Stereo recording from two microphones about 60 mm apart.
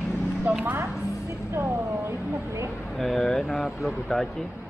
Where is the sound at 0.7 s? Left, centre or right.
Right.